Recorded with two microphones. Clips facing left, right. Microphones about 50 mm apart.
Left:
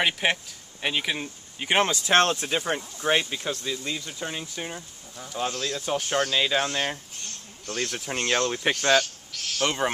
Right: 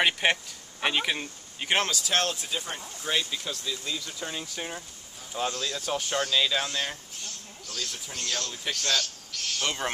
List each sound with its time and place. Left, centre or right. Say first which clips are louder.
0.0 s speech: even; centre
1.8 s speech: left 8 dB; left
3.0 s speech: left 4 dB; left
4.2 s speech: left 2 dB; centre
5.3 s speech: left 1 dB; centre
5.7 s speech: left 3 dB; left
7.6 s speech: left 7 dB; left
9.3 s speech: left 5 dB; centre